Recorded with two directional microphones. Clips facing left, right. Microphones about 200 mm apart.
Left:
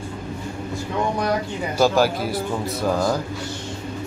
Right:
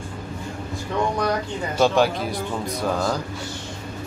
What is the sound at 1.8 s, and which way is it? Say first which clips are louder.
Speech: left 1 dB; 5° left (ahead or behind).